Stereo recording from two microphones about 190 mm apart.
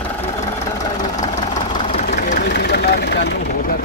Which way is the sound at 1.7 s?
30° left (ahead or behind).